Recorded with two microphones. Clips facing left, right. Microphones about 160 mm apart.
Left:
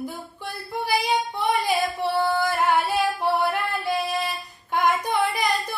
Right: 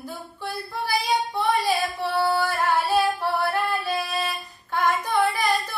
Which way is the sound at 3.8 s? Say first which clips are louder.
Left 2 dB; 15° left (ahead or behind).